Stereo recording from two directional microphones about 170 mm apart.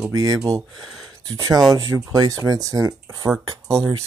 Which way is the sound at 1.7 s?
20° right (ahead or behind).